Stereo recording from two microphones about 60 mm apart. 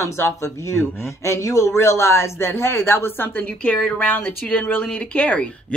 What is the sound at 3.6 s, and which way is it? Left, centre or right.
Speech, left.